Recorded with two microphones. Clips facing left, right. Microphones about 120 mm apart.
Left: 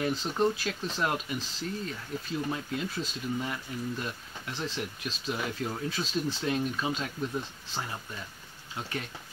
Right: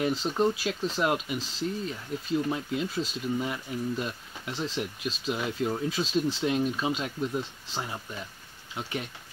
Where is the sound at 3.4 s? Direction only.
10° right (ahead or behind).